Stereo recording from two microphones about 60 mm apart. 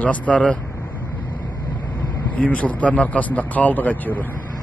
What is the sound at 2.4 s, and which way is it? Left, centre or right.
Speech, left.